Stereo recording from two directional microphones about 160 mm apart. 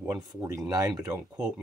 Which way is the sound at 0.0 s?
25° right (ahead or behind).